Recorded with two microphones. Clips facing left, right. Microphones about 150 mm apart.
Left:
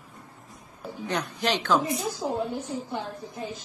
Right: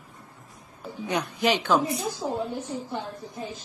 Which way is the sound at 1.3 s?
10° right (ahead or behind).